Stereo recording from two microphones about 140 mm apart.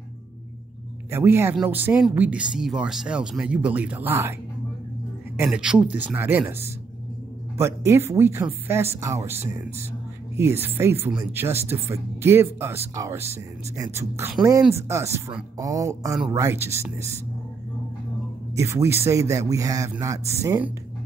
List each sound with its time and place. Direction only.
1.1 s speech: 15° right (ahead or behind)
5.4 s speech: 5° right (ahead or behind)
18.6 s speech: 20° right (ahead or behind)